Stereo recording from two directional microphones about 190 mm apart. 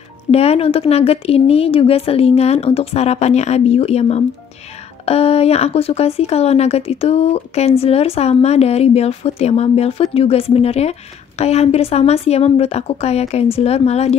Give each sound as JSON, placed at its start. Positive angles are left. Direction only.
{"t": 0.3, "sound": "speech", "side_deg": 35}